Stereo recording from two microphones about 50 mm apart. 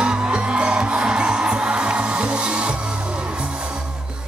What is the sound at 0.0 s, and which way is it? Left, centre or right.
Music, centre.